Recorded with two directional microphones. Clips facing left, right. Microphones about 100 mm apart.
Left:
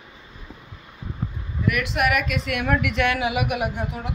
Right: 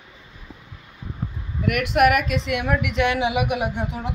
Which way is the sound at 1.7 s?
55° right (ahead or behind).